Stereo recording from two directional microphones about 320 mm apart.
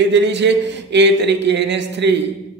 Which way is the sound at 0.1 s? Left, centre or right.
Right.